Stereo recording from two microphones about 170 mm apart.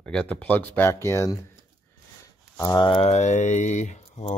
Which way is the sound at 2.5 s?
20° left (ahead or behind).